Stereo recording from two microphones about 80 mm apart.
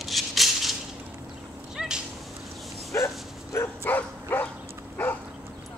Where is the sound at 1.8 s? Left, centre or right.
Centre.